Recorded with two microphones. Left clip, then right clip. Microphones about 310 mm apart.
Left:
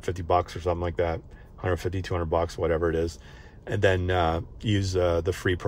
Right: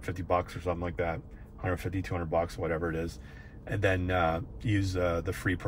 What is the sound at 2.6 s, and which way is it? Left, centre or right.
Speech, left.